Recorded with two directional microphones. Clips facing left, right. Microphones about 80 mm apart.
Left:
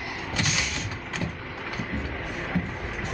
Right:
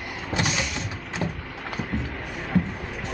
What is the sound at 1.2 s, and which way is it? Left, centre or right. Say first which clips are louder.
Vehicle: right 5 dB; right.